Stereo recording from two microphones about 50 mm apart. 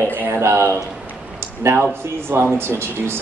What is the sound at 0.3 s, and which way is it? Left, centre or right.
Speech, right.